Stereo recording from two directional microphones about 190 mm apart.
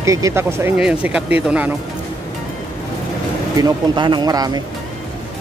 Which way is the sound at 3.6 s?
20° right (ahead or behind).